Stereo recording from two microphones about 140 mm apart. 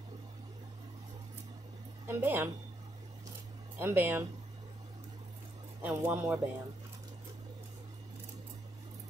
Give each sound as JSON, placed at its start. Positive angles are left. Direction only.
{"t": 2.0, "sound": "speech", "side_deg": -15}
{"t": 3.7, "sound": "speech", "side_deg": -15}
{"t": 5.8, "sound": "speech", "side_deg": -15}